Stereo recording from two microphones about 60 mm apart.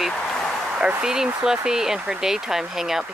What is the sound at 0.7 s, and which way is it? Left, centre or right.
Speech, centre.